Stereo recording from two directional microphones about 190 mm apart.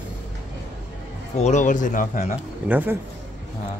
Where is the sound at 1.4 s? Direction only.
40° left (ahead or behind).